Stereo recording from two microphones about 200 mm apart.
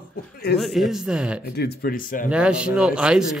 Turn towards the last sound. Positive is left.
turn(degrees=-5)  # may be behind; listen again after turning